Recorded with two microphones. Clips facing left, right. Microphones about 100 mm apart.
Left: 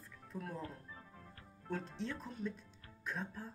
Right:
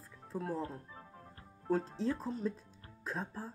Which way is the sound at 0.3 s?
30° right (ahead or behind).